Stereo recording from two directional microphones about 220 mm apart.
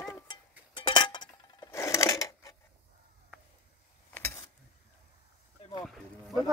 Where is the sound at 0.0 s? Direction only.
15° left (ahead or behind).